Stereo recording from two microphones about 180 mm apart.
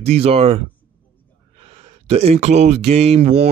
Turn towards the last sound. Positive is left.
turn(degrees=-35)  # may be behind; listen again after turning